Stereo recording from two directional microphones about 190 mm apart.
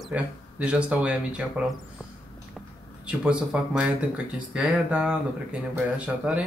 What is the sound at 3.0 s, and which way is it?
Speech, 5° right (ahead or behind).